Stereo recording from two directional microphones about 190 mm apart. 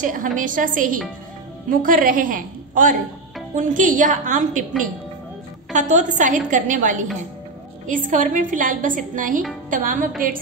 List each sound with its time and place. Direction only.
0.0 s a woman's voice: 45° right (ahead or behind)
5.7 s a woman's voice: 40° right (ahead or behind)